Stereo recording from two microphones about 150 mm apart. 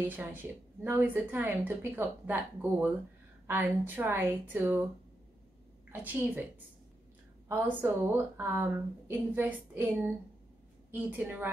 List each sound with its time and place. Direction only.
0.0 s a woman's voice: 10° right (ahead or behind)
5.9 s a woman's voice: 10° right (ahead or behind)
7.4 s a woman's voice: 15° right (ahead or behind)